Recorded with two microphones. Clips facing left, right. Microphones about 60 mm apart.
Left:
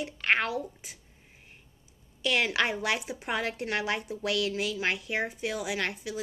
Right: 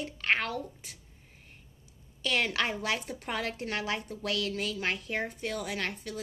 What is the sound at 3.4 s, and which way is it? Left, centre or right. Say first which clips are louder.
A woman's voice: left 3 dB; left.